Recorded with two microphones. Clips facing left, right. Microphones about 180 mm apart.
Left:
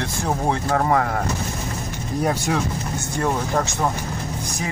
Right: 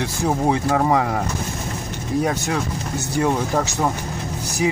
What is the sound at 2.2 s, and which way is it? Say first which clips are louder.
Speech: even; centre (ahead or behind).